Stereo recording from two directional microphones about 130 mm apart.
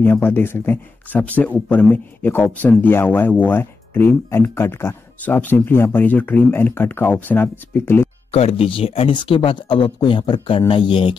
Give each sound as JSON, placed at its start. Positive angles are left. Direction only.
{"t": 0.0, "sound": "speech", "side_deg": 15}
{"t": 8.3, "sound": "speech", "side_deg": 50}